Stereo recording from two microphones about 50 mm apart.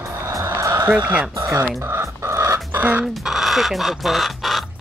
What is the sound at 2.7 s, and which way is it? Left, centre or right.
Chicken, right.